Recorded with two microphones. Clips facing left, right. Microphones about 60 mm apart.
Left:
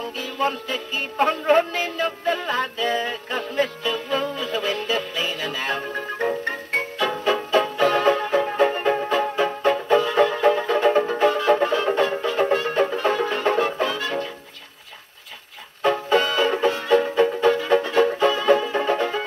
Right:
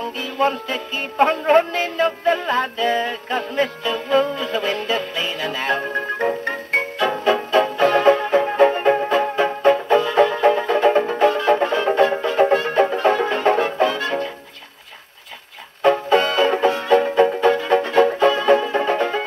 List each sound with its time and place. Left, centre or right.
0.4 s music: right
15.9 s music: right